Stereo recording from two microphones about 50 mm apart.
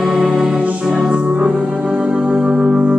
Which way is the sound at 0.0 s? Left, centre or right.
Centre.